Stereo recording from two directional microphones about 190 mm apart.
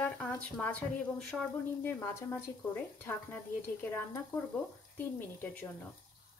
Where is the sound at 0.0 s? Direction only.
5° left (ahead or behind).